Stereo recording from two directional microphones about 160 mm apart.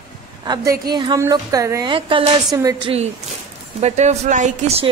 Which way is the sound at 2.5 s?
20° right (ahead or behind).